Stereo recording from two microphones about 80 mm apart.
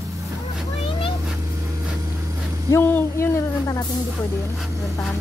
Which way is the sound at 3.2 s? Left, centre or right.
Left.